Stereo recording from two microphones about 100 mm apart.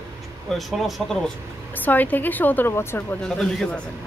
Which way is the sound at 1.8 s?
15° left (ahead or behind).